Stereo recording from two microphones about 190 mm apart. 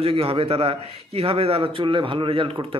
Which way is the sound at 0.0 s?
30° right (ahead or behind).